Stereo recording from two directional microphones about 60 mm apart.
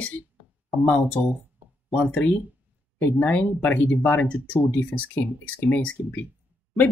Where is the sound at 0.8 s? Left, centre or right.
Left.